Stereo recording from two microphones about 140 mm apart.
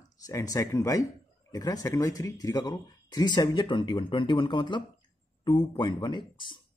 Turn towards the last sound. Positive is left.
turn(degrees=35)  # may be behind; listen again after turning